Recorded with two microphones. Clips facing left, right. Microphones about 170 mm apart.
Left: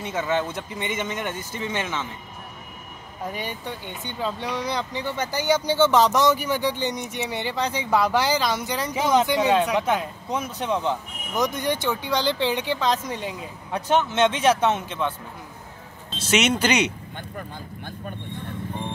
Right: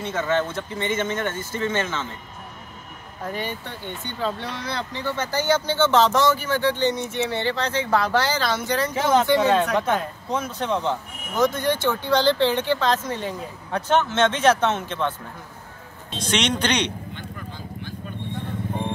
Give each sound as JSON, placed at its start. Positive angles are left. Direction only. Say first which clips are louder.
{"t": 0.0, "sound": "speech", "louder": "right 2 dB", "side_deg": 15}
{"t": 3.3, "sound": "speech", "louder": "right 2 dB", "side_deg": 15}
{"t": 16.2, "sound": "speech", "louder": "left 2 dB", "side_deg": 5}
{"t": 17.1, "sound": "a sound", "louder": "left 1 dB", "side_deg": 50}